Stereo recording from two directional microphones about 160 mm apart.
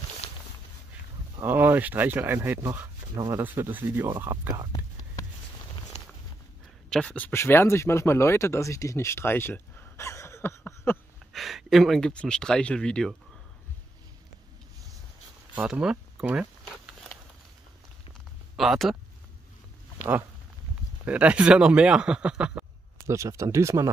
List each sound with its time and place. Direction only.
1.4 s speech: 15° right (ahead or behind)
5.9 s walk: 40° left (ahead or behind)
6.9 s speech: 5° left (ahead or behind)
11.3 s speech: centre (ahead or behind)
15.5 s a sound: 5° right (ahead or behind)
18.6 s speech: centre (ahead or behind)
21.0 s speech: 10° right (ahead or behind)
23.0 s speech: 20° right (ahead or behind)